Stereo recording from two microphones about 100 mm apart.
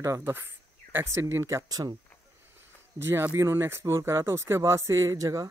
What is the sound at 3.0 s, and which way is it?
Speech, 25° right (ahead or behind).